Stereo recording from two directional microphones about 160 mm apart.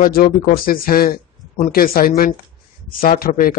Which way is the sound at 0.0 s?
65° left (ahead or behind).